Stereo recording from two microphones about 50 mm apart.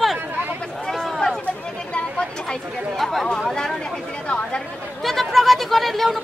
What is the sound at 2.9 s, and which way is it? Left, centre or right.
Speech, centre.